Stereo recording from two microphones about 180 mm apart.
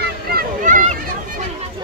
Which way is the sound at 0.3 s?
45° right (ahead or behind).